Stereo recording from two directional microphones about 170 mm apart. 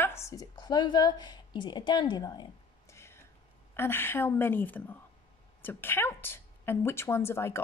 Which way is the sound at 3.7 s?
15° left (ahead or behind).